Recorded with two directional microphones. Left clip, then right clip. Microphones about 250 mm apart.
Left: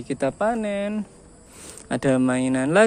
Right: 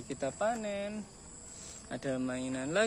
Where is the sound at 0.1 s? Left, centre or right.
Left.